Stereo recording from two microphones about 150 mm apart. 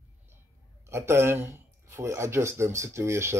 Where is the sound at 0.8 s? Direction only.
15° right (ahead or behind).